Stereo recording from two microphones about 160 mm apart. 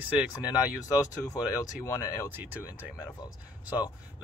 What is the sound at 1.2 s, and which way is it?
Speech, 20° left (ahead or behind).